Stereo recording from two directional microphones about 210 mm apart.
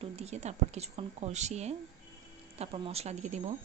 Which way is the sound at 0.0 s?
30° right (ahead or behind).